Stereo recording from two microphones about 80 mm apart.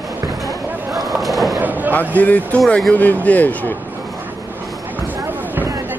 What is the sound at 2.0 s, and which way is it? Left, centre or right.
Speech, centre.